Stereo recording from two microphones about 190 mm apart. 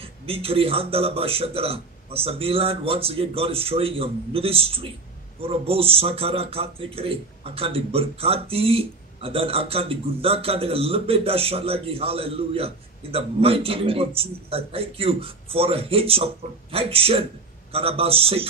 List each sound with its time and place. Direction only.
0.0 s a man's voice: 30° right (ahead or behind)